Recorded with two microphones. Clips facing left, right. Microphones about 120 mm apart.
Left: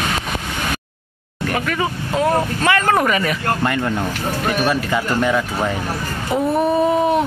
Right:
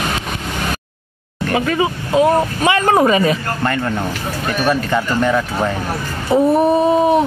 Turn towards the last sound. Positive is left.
turn(degrees=-20)  # may be behind; listen again after turning